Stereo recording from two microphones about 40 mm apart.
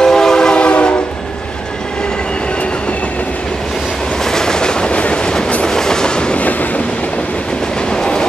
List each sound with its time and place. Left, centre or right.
0.0 s train: centre
4.2 s train: centre
6.3 s train: left
7.9 s train: centre